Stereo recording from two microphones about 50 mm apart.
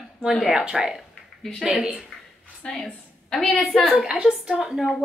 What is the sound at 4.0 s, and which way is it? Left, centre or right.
Speech, centre.